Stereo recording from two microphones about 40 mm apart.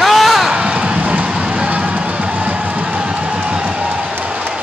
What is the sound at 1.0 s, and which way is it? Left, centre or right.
Music, right.